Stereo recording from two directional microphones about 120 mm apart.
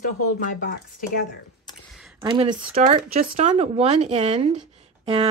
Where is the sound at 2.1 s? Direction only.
45° right (ahead or behind).